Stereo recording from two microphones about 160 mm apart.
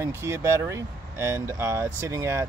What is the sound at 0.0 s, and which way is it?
Speech, 15° right (ahead or behind).